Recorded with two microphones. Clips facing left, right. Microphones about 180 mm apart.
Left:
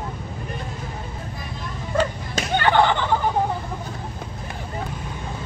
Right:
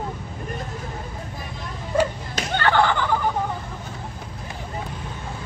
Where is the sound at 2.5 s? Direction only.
15° left (ahead or behind).